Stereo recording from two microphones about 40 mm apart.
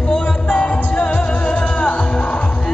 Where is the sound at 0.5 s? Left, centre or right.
Left.